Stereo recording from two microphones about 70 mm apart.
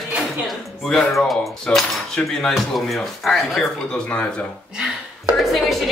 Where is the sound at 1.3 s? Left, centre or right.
Centre.